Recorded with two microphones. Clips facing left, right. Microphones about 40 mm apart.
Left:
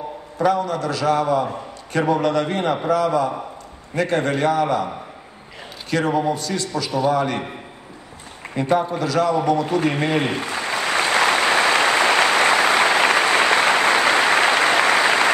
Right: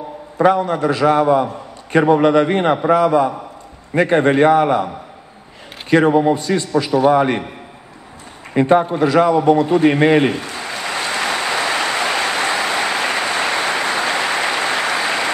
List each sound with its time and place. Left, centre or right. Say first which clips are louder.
0.4 s a man's voice: right 5 dB; right
5.9 s a man's voice: right 7 dB; right
8.5 s a man's voice: right 6 dB; right
10.3 s a sound: left 2 dB; left
11.4 s applause: left 2 dB; left